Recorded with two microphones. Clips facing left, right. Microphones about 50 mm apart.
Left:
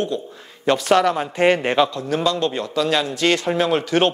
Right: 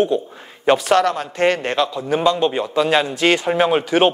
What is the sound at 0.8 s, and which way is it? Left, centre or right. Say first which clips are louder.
A man's voice: even; centre.